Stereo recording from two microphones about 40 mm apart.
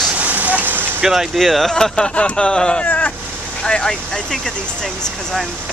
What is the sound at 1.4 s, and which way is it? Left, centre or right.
Speech, centre.